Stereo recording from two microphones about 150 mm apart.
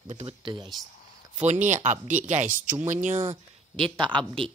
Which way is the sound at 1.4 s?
55° right (ahead or behind).